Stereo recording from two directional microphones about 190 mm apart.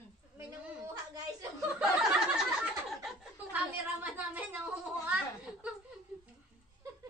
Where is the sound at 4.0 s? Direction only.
10° right (ahead or behind).